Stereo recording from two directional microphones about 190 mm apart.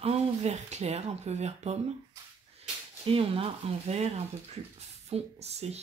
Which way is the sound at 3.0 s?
30° right (ahead or behind).